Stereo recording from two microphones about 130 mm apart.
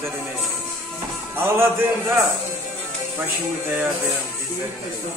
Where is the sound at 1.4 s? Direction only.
20° right (ahead or behind).